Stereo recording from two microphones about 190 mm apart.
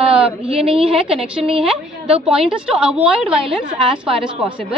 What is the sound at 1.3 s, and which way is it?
Speech, 30° right (ahead or behind).